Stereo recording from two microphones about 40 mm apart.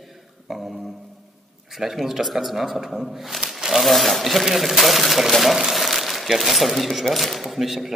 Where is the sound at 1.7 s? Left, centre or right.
Centre.